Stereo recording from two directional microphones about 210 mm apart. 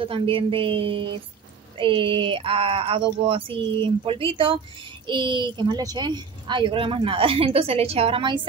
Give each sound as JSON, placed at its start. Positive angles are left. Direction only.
{"t": 0.0, "sound": "a woman's voice", "side_deg": -25}